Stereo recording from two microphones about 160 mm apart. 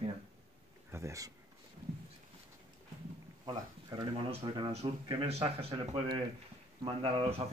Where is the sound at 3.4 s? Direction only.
25° right (ahead or behind).